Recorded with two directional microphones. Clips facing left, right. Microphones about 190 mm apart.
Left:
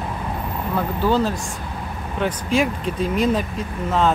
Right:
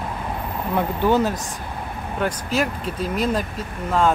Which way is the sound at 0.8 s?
20° right (ahead or behind).